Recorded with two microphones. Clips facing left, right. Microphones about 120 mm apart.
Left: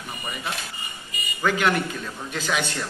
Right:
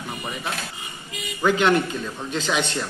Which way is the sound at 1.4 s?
20° right (ahead or behind).